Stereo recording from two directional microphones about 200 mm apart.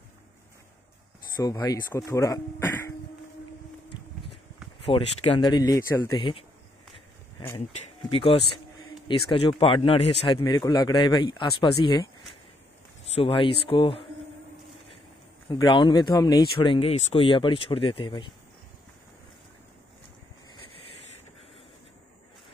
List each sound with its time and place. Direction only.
1.4 s speech: 15° left (ahead or behind)
4.8 s speech: 25° left (ahead or behind)
13.1 s speech: 25° left (ahead or behind)
15.5 s speech: 25° left (ahead or behind)